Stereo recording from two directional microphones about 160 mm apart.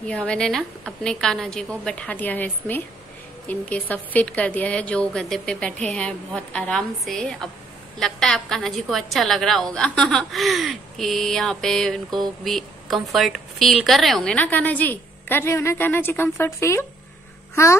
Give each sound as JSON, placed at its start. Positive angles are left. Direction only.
{"t": 0.0, "sound": "a woman's voice", "side_deg": 5}